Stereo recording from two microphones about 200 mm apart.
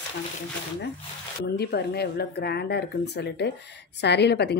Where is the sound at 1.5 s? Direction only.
55° left (ahead or behind).